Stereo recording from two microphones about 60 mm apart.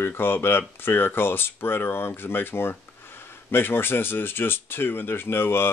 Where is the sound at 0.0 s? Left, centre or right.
Left.